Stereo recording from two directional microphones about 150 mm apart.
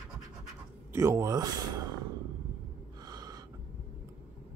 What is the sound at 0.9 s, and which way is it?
Speech, 20° right (ahead or behind).